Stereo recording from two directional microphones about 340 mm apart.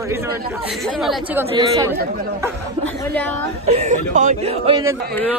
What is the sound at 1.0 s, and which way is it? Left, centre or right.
Speech, centre.